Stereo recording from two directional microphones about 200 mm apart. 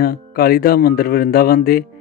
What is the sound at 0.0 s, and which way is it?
Speech, 50° left (ahead or behind).